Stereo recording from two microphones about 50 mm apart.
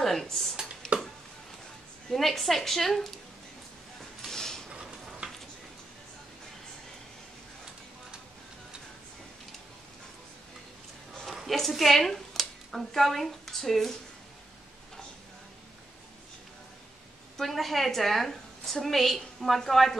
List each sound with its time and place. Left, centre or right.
0.0 s a woman's voice: centre
0.9 s a sound: right
2.0 s a woman's voice: centre
4.3 s a sound: centre
11.3 s speech: centre
17.4 s a woman's voice: centre